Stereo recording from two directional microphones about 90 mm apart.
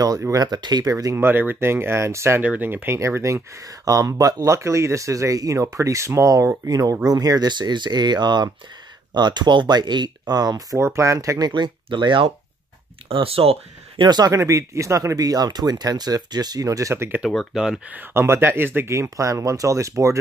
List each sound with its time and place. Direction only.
0.3 s speech: 45° right (ahead or behind)
0.9 s speech: 35° right (ahead or behind)
1.2 s speech: 20° right (ahead or behind)
2.4 s speech: 20° right (ahead or behind); by 10.8 s 45° right (ahead or behind)
10.8 s speech: 30° right (ahead or behind); by 12.3 s 65° right (ahead or behind)
13.1 s speech: 90° right
14.0 s speech: 50° right (ahead or behind)
14.3 s speech: 35° right (ahead or behind)
17.4 s speech: 5° right (ahead or behind)
17.9 s speech: 25° right (ahead or behind)